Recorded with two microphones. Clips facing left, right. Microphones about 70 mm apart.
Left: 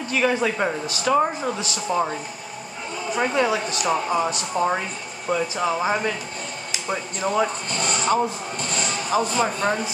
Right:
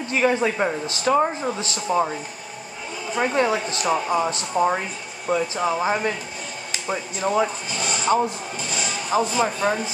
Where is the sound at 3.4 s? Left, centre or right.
Right.